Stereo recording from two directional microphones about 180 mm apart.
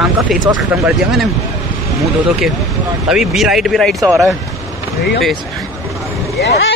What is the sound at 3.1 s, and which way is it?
Speech, 5° right (ahead or behind).